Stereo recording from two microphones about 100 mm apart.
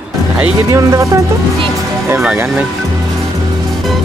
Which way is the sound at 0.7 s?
30° right (ahead or behind).